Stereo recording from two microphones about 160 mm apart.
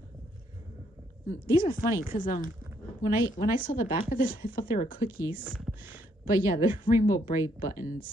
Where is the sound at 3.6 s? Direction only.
60° left (ahead or behind).